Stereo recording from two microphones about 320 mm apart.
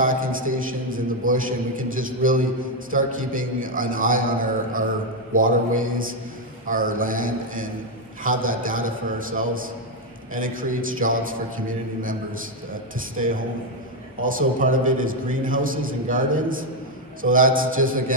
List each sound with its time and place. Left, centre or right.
0.0 s a man's voice: right
14.2 s a man's voice: right